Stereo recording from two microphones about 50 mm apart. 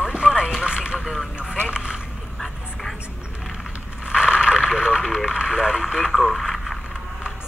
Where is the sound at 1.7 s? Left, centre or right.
Centre.